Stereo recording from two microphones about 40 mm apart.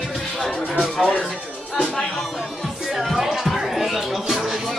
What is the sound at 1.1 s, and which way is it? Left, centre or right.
Speech, centre.